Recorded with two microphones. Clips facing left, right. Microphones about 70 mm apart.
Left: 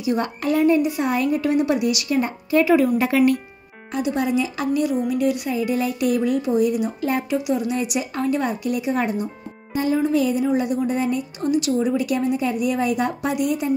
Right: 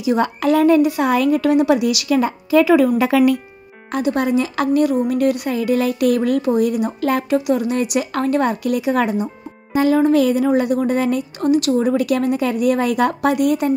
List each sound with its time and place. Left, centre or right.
0.0 s a woman's voice: right
3.9 s a woman's voice: right
10.0 s speech: right